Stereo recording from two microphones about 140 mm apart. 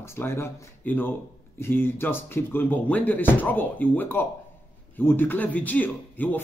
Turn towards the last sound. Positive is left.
turn(degrees=10)  # may be behind; listen again after turning